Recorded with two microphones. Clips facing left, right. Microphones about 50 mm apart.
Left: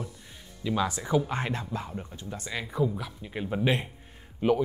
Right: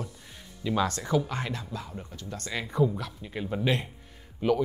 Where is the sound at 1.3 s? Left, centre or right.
Left.